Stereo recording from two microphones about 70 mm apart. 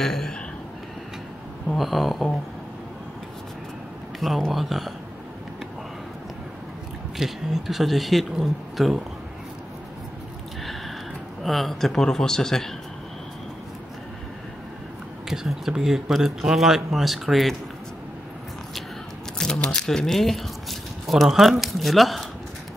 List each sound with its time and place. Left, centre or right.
0.0 s speech: centre
1.8 s speech: centre
4.2 s speech: centre
7.2 s speech: centre
11.4 s speech: centre
15.2 s speech: centre
19.3 s speech: centre